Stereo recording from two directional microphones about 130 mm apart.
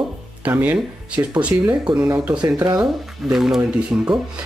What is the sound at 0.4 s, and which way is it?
Speech, 10° right (ahead or behind).